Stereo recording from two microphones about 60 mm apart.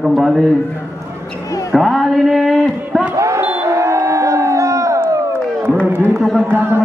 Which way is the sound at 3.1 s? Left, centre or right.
Right.